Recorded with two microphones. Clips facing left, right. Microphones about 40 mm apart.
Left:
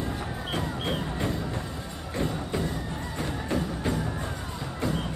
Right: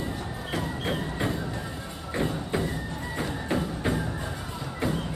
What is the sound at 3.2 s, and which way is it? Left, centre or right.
Music, right.